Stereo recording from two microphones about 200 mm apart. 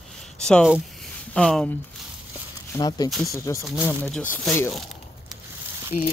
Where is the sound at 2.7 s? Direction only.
20° left (ahead or behind).